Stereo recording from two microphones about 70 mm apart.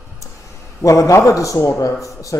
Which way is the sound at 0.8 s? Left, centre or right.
Left.